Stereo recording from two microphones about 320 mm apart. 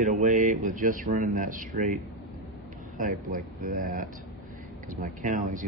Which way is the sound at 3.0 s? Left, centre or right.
Right.